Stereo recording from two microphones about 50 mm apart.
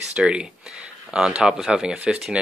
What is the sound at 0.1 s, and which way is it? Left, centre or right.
Speech, centre.